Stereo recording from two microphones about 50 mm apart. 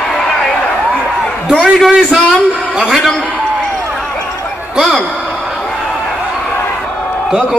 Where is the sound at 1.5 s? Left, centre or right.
Centre.